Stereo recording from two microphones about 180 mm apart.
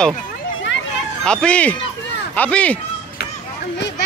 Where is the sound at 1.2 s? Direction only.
5° left (ahead or behind).